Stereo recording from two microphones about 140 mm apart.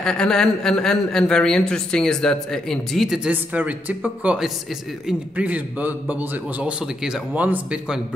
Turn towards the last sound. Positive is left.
turn(degrees=-10)  # may be behind; listen again after turning